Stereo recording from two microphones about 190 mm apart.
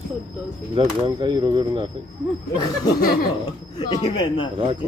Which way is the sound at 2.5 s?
20° left (ahead or behind).